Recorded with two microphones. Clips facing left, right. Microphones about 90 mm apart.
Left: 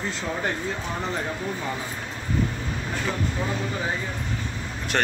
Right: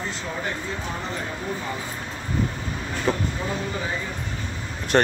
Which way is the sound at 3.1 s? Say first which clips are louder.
Right 6 dB; 40° right (ahead or behind).